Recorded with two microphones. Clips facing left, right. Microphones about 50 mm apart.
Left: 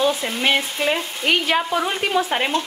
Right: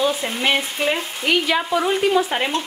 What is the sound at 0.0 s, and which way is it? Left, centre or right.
Frying, centre.